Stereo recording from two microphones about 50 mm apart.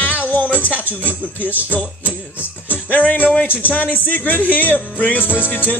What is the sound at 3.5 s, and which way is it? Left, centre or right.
Speech, left.